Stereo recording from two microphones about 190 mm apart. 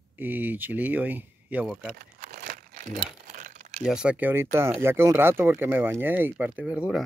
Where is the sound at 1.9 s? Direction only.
45° right (ahead or behind).